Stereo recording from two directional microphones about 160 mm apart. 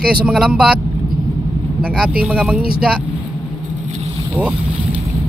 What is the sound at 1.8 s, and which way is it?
Speech, 5° right (ahead or behind).